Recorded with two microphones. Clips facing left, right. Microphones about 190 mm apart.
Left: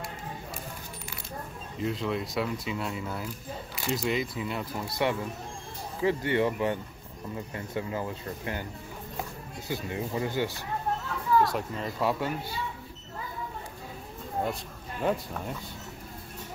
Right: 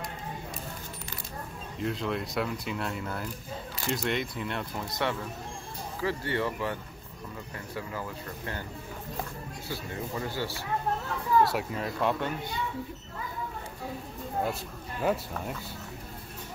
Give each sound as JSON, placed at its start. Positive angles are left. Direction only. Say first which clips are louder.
{"t": 1.8, "sound": "speech", "louder": "left 1 dB", "side_deg": 0}
{"t": 9.7, "sound": "speech", "louder": "left 4 dB", "side_deg": 15}
{"t": 11.4, "sound": "speech", "louder": "right 1 dB", "side_deg": -5}
{"t": 14.4, "sound": "speech", "louder": "even", "side_deg": -5}